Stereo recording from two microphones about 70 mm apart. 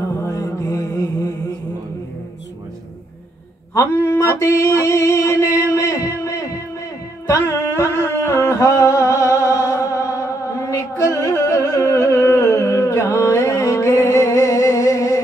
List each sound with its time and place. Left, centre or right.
0.2 s mantra: left
3.9 s music: left